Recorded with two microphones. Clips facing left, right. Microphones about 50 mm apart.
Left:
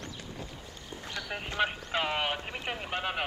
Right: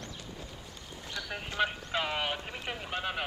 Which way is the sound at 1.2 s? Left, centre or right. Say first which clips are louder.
Left 1 dB; left.